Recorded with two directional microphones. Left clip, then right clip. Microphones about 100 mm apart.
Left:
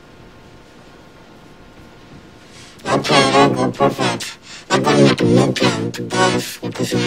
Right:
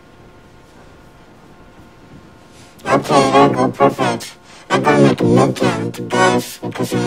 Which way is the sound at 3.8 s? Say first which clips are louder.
Right 3 dB; 15° left (ahead or behind).